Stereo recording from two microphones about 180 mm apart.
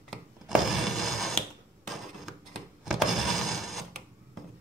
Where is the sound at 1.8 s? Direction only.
Centre (ahead or behind).